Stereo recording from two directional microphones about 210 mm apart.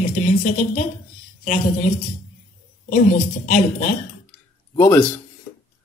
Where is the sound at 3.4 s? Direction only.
40° left (ahead or behind).